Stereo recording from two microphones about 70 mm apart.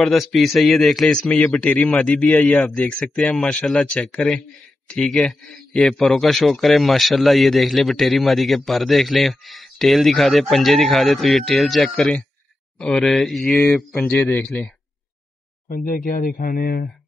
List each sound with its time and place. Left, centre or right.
0.0 s a man's voice: centre
1.1 s a man's voice: centre
13.5 s a man's voice: left